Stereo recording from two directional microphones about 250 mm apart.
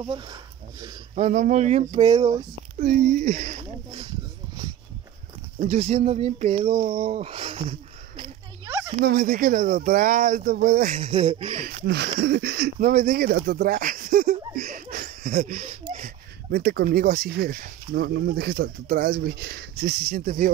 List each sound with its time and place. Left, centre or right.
0.0 s speech: centre
1.1 s speech: right
2.8 s speech: right
5.6 s speech: right
8.6 s a sound: centre
9.0 s speech: right
11.7 s speech: right